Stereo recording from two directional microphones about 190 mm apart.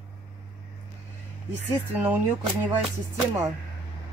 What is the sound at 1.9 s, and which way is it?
Speech, 10° right (ahead or behind).